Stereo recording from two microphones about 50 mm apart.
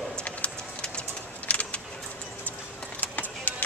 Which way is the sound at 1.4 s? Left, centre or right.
Left.